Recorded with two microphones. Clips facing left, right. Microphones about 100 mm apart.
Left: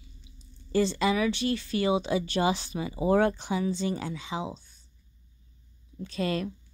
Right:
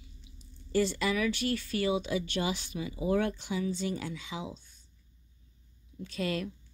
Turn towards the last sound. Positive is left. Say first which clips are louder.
# left 4 dB
turn(degrees=35)  # may be behind; listen again after turning